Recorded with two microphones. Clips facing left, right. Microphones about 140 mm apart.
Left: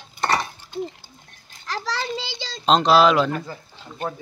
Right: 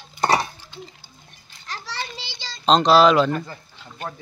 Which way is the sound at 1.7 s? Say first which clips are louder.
Left 5 dB; 90° left.